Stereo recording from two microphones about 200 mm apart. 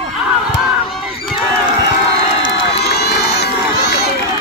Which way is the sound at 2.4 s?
50° left (ahead or behind).